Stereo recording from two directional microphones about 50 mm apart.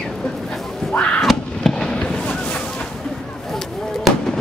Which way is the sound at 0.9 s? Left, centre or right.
Left.